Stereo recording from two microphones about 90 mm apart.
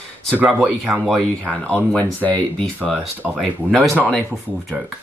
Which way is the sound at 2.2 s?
15° left (ahead or behind).